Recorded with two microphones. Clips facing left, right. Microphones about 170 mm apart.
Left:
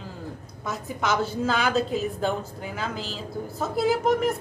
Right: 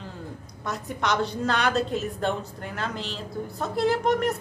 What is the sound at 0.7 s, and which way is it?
A woman's voice, centre (ahead or behind).